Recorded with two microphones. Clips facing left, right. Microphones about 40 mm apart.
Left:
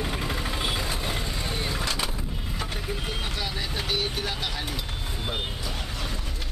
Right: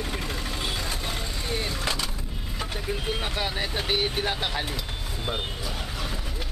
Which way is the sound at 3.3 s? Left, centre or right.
Right.